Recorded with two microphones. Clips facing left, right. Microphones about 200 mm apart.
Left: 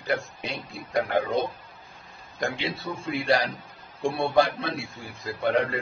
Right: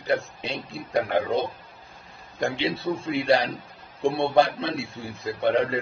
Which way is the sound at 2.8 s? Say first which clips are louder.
Right 3 dB; 25° right (ahead or behind).